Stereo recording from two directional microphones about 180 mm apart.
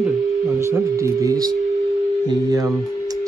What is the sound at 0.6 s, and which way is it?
Speech, 15° right (ahead or behind).